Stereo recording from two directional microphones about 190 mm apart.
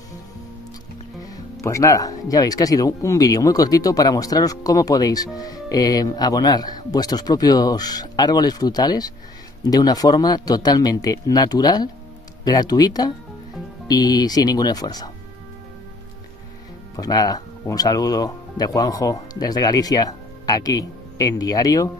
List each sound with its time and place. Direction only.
1.3 s speech: 15° left (ahead or behind)
16.9 s speech: 20° left (ahead or behind)